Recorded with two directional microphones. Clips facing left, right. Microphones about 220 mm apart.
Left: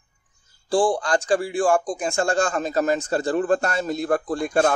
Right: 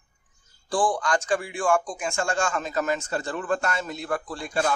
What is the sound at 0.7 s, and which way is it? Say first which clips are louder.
A man's voice: left 4 dB; 25° left (ahead or behind).